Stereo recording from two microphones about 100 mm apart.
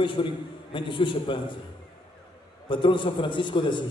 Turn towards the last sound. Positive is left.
turn(degrees=55)  # may be behind; listen again after turning